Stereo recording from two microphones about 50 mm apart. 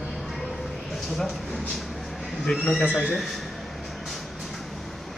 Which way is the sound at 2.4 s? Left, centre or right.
Left.